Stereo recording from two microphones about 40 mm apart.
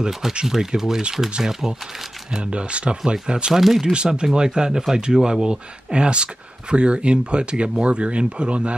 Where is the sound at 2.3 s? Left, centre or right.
Right.